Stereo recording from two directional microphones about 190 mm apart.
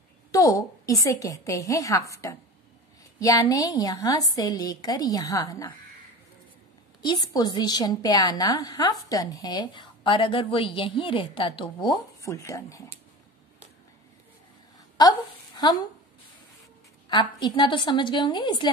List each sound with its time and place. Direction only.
0.3 s a sound: 20° left (ahead or behind)
1.0 s a woman's voice: 15° left (ahead or behind)
7.0 s a woman's voice: 20° left (ahead or behind)
12.2 s a woman's voice: 15° left (ahead or behind)
15.0 s a woman's voice: 20° left (ahead or behind)
17.1 s a woman's voice: 25° left (ahead or behind)